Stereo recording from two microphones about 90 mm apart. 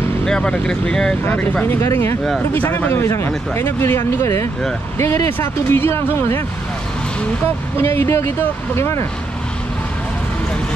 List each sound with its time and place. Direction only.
0.2 s speech: 10° left (ahead or behind)
1.5 s speech: 20° left (ahead or behind)
1.8 s speech: 30° left (ahead or behind)
2.5 s speech: 20° left (ahead or behind)
7.7 s speech: 30° left (ahead or behind)